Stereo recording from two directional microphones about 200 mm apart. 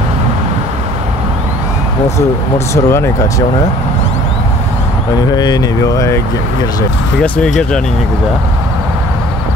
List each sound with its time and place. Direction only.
2.7 s speech: 15° left (ahead or behind)
5.1 s speech: 20° left (ahead or behind)
7.2 s speech: 5° left (ahead or behind)